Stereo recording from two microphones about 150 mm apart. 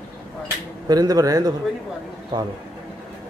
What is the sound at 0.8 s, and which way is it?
Speech, 25° right (ahead or behind).